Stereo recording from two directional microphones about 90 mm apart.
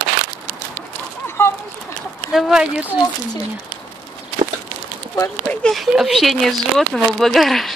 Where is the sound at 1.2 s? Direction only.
25° left (ahead or behind).